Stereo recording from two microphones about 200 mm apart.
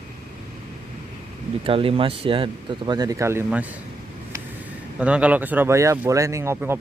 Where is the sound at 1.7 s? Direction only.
30° right (ahead or behind); by 3.6 s 10° right (ahead or behind).